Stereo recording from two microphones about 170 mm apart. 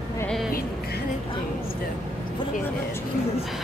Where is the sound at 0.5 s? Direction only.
60° left (ahead or behind).